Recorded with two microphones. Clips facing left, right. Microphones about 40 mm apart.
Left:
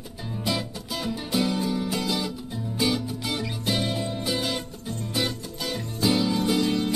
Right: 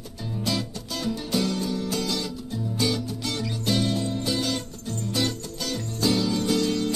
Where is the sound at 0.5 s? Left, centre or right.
Centre.